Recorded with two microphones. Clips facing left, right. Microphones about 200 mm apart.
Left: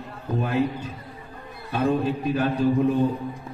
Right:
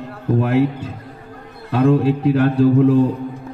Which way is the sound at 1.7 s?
90° right.